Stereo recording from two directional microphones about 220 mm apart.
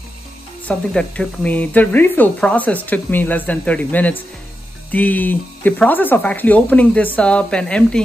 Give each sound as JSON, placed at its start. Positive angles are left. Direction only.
{"t": 0.7, "sound": "speech", "side_deg": 5}